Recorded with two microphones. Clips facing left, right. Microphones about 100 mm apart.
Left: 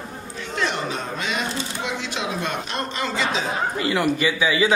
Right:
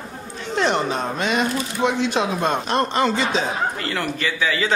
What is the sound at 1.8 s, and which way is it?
Speech, 45° right (ahead or behind).